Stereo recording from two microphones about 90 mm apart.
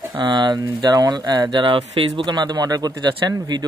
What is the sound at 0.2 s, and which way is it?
Speech, 60° right (ahead or behind).